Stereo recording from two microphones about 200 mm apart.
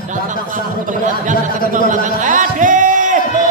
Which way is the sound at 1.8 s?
40° right (ahead or behind).